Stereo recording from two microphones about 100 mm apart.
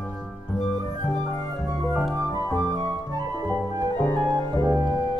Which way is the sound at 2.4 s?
35° left (ahead or behind).